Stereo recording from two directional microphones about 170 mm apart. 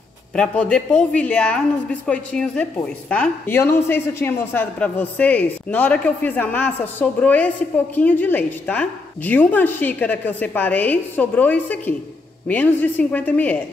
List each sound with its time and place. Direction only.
0.4 s a woman's voice: 5° left (ahead or behind)